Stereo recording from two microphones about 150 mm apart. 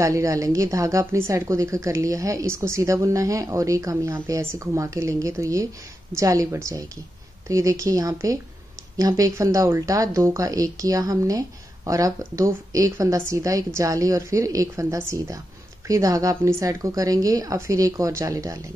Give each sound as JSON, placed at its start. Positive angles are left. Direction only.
{"t": 0.0, "sound": "speech", "side_deg": -20}